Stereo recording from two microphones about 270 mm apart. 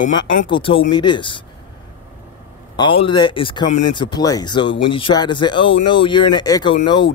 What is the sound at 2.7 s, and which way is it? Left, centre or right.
Speech, centre.